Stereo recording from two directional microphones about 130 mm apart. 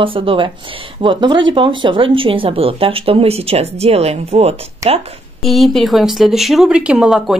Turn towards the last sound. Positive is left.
turn(degrees=-5)  # may be behind; listen again after turning